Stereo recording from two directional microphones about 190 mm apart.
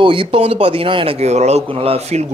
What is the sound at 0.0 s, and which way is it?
A man's voice, 25° right (ahead or behind).